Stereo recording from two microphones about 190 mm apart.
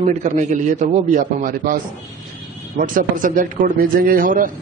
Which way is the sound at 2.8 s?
45° right (ahead or behind).